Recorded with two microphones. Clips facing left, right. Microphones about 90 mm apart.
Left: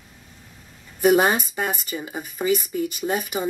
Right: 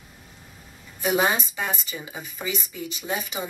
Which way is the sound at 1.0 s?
50° left (ahead or behind).